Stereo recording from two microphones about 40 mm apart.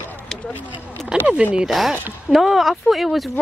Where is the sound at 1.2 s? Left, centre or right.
Right.